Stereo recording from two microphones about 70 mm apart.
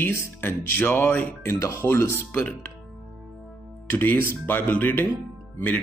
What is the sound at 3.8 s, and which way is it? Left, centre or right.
Speech, left.